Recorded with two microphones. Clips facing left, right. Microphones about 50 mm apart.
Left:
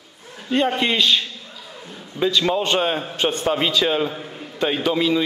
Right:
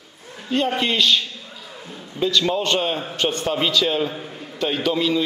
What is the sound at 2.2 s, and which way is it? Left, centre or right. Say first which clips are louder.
A man's voice: left 1 dB; centre.